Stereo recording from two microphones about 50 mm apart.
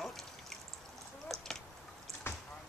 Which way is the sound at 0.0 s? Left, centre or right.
Centre.